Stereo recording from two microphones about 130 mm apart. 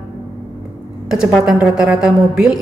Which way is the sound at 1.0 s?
5° right (ahead or behind).